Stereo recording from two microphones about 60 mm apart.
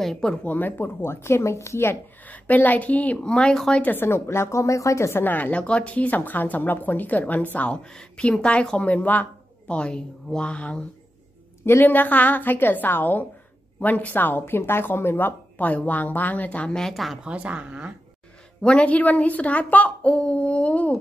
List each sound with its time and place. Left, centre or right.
0.0 s speech: centre
0.4 s speech: left
2.2 s speech: left
3.8 s speech: left
5.2 s speech: left
11.6 s a woman's voice: left
11.9 s a woman's voice: left
16.7 s speech: centre
17.2 s a woman's voice: right
18.6 s speech: centre